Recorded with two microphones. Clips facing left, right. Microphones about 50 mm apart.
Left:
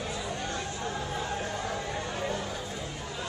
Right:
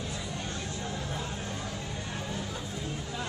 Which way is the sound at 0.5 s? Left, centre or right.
Left.